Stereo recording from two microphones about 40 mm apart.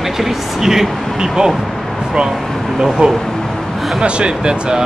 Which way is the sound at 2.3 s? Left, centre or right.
Centre.